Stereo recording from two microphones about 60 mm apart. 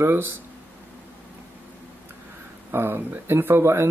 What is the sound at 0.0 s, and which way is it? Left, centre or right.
Speech, right.